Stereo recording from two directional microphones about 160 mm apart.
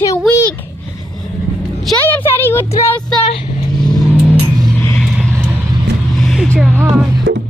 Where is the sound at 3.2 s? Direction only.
30° left (ahead or behind).